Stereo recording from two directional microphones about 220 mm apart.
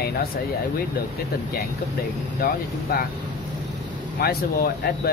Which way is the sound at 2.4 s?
40° left (ahead or behind).